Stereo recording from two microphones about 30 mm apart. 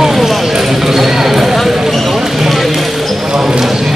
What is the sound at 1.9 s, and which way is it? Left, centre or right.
Basketball bounce, centre.